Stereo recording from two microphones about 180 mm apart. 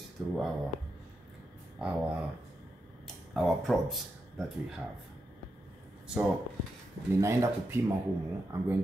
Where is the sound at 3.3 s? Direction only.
Centre (ahead or behind).